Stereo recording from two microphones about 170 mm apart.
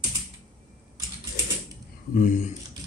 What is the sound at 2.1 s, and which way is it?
Speech, 50° left (ahead or behind).